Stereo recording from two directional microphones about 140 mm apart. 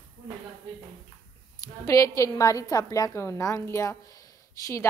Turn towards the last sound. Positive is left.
turn(degrees=20)  # may be behind; listen again after turning